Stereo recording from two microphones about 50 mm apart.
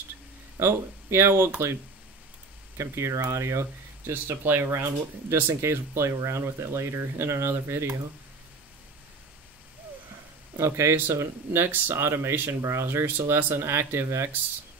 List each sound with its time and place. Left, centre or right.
0.6 s speech: right
2.8 s speech: right
5.3 s speech: right
10.6 s speech: right
11.1 s speech: right
12.6 s speech: right